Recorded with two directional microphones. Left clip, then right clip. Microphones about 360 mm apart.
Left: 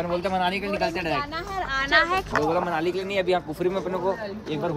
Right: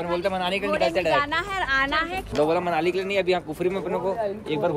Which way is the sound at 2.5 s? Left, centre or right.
Centre.